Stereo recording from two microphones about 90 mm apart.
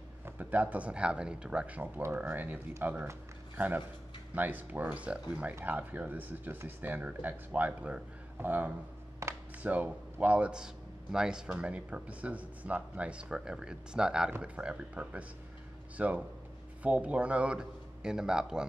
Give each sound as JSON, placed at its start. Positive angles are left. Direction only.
{"t": 0.2, "sound": "a man's voice", "side_deg": -20}